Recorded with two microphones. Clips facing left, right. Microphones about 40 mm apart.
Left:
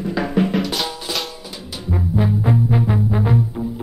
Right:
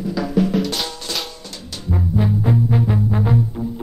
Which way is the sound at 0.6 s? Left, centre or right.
Centre.